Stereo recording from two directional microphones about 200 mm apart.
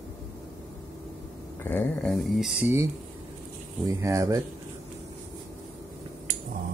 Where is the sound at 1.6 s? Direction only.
10° left (ahead or behind).